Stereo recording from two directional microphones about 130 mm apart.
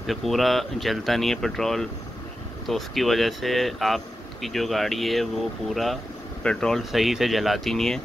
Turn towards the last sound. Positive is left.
turn(degrees=5)  # may be behind; listen again after turning